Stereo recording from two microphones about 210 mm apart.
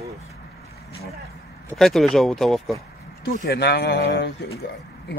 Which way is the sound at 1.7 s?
Centre (ahead or behind).